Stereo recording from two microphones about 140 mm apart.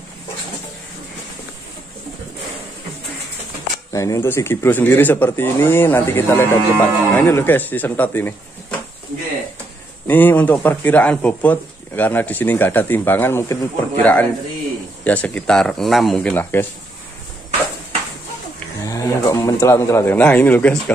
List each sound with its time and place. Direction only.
3.9 s speech: 25° left (ahead or behind)
10.0 s speech: 15° left (ahead or behind)
18.9 s speech: 25° left (ahead or behind); by 20.9 s 5° left (ahead or behind)